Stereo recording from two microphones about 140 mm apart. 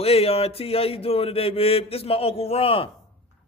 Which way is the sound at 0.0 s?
45° left (ahead or behind).